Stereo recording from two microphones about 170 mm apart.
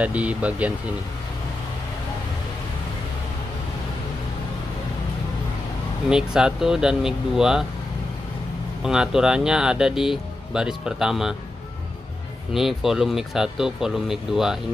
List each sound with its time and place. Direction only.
0.0 s speech: 10° right (ahead or behind)
6.0 s speech: 5° right (ahead or behind)
8.8 s speech: 5° right (ahead or behind)
12.5 s speech: centre (ahead or behind)